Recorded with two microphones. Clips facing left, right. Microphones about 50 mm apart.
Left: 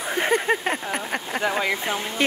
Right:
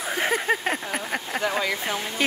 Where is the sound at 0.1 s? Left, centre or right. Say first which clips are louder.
Left 2 dB; centre.